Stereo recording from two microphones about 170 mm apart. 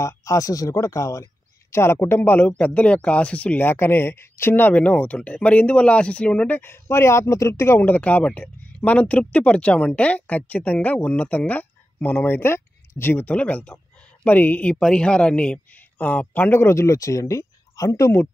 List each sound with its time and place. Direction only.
0.0 s speech: 20° left (ahead or behind)